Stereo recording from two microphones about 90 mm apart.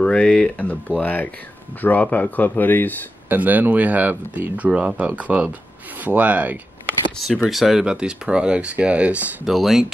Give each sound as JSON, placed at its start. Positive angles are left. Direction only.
{"t": 0.0, "sound": "speech", "side_deg": 10}
{"t": 3.3, "sound": "speech", "side_deg": -20}
{"t": 7.4, "sound": "speech", "side_deg": 0}
{"t": 9.5, "sound": "speech", "side_deg": -5}